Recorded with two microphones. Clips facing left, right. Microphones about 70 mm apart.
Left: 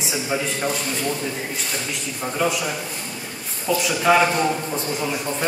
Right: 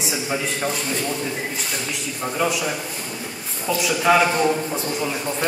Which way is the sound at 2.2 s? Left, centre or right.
Centre.